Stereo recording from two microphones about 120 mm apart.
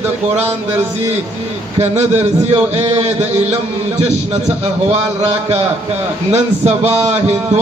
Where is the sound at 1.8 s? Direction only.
65° right (ahead or behind).